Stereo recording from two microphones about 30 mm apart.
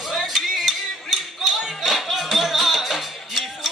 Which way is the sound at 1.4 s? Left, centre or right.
Centre.